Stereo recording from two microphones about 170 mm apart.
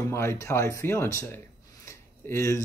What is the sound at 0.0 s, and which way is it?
Speech, 15° left (ahead or behind).